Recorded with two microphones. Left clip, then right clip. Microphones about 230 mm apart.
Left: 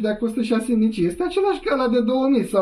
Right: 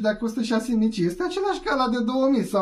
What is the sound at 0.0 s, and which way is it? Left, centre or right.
Speech, right.